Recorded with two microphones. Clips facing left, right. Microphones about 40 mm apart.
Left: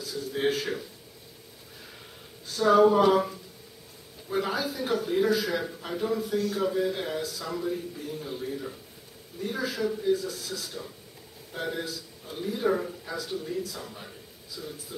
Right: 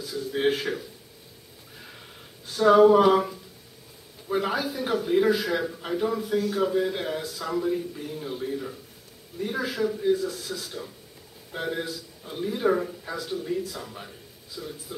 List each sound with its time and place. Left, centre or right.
0.3 s speech: centre
2.4 s a man's voice: centre